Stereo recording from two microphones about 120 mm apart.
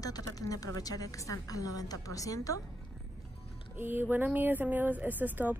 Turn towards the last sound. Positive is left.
turn(degrees=-15)  # may be behind; listen again after turning